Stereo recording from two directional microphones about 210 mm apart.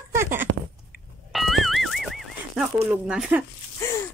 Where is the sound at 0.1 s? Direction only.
10° right (ahead or behind).